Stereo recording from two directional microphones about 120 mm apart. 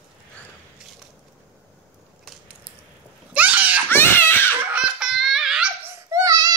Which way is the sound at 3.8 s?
20° left (ahead or behind).